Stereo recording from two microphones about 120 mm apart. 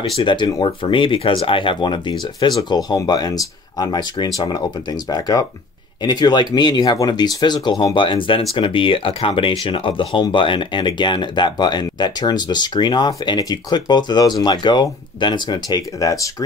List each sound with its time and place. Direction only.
0.2 s speech: 40° left (ahead or behind)
5.3 s speech: 30° left (ahead or behind)